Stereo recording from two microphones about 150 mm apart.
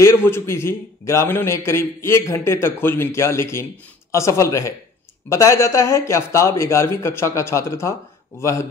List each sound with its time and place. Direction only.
0.0 s a man's voice: 15° left (ahead or behind)